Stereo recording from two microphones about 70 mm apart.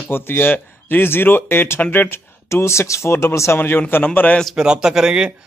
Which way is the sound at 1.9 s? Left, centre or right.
Left.